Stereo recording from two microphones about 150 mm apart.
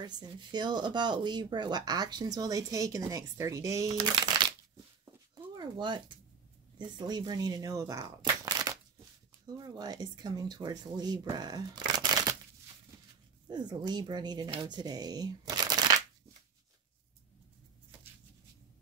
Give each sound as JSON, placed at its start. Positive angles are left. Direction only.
{"t": 0.0, "sound": "speech", "side_deg": -30}
{"t": 5.3, "sound": "a sound", "side_deg": -30}
{"t": 6.8, "sound": "speech", "side_deg": -30}
{"t": 13.5, "sound": "speech", "side_deg": -30}